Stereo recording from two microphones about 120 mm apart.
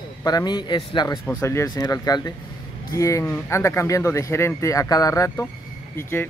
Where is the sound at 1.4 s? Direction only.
25° left (ahead or behind).